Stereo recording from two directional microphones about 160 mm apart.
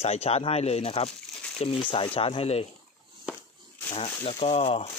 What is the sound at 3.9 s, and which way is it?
Speech, 40° left (ahead or behind).